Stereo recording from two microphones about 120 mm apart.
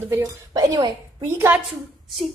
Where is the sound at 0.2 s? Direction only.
30° right (ahead or behind).